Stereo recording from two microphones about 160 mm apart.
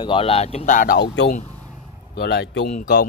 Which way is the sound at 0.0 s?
35° left (ahead or behind).